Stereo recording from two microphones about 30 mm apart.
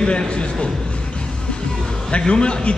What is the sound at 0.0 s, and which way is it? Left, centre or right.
Speech, left.